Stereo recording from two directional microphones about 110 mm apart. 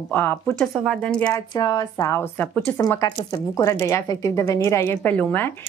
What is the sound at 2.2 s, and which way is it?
Speech, 15° left (ahead or behind).